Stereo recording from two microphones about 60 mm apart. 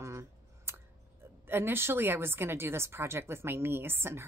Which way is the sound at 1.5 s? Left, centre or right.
Right.